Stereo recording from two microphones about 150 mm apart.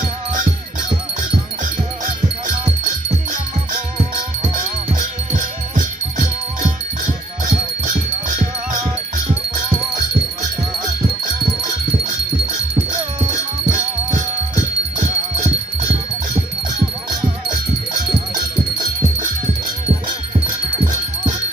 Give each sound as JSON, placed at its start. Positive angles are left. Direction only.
{"t": 4.6, "sound": "music", "side_deg": -60}
{"t": 7.4, "sound": "music", "side_deg": -60}
{"t": 13.7, "sound": "music", "side_deg": -55}